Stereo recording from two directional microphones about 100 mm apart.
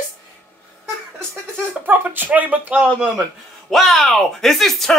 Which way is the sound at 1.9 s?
20° right (ahead or behind).